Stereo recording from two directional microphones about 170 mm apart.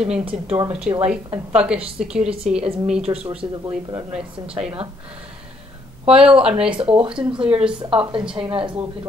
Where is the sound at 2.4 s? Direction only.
45° right (ahead or behind).